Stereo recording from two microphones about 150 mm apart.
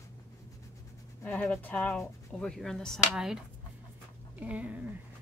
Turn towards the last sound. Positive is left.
turn(degrees=-10)  # may be behind; listen again after turning